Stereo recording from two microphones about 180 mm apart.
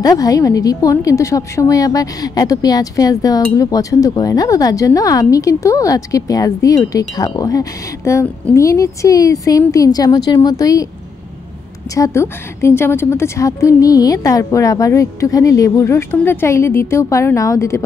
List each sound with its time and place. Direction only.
0.0 s speech: 20° left (ahead or behind)
11.9 s a woman's voice: 15° left (ahead or behind)